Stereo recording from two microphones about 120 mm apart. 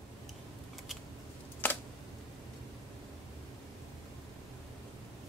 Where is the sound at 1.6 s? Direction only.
15° left (ahead or behind).